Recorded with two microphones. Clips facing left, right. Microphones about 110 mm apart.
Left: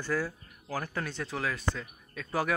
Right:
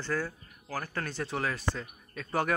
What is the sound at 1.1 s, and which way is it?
Speech, centre (ahead or behind).